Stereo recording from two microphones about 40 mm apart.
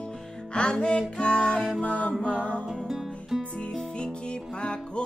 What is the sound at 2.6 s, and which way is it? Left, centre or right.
Music, centre.